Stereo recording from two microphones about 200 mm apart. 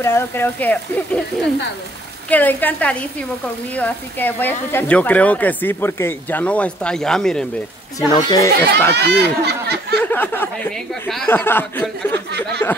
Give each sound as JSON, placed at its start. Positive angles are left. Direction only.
{"t": 0.0, "sound": "speech", "side_deg": 10}
{"t": 8.1, "sound": "speech", "side_deg": 20}
{"t": 8.9, "sound": "speech", "side_deg": -55}
{"t": 9.9, "sound": "speech", "side_deg": 10}